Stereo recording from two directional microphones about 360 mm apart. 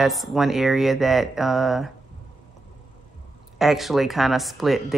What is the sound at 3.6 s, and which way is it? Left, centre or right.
Speech, centre.